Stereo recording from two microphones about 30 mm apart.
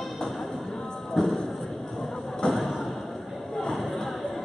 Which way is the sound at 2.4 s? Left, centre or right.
Left.